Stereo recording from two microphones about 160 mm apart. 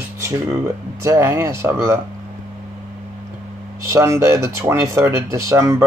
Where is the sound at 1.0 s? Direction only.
15° right (ahead or behind).